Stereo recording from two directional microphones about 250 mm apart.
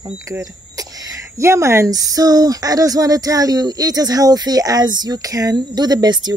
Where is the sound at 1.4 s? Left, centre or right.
Centre.